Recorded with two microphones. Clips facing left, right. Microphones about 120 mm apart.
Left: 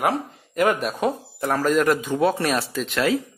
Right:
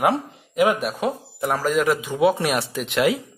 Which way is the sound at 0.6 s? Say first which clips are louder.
Right 1 dB; 10° right (ahead or behind).